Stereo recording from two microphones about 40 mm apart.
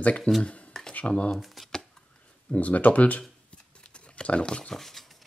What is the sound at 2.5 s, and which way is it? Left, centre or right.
Speech, left.